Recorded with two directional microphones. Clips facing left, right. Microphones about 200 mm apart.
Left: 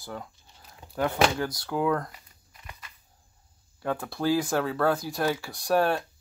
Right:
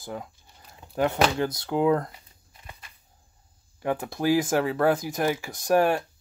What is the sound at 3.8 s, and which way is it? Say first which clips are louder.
Speech: right 2 dB; 20° right (ahead or behind).